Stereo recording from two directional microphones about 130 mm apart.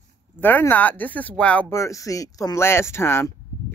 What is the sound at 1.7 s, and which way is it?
Speech, 25° left (ahead or behind).